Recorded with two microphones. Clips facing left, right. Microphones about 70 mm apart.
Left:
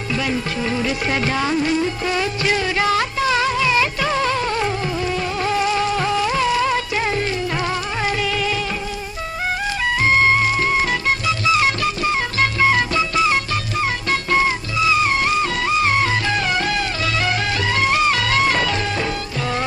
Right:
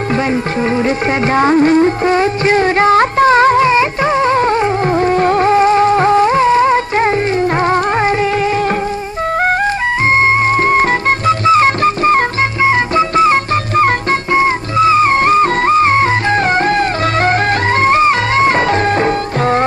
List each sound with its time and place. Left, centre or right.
0.1 s music: right
10.1 s music: right
12.6 s music: right